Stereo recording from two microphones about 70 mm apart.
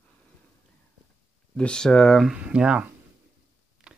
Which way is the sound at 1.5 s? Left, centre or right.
Centre.